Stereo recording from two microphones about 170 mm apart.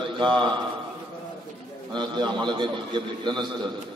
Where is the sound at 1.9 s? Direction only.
25° right (ahead or behind).